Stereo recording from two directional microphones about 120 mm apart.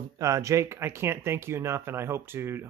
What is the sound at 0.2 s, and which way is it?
Speech, 25° right (ahead or behind).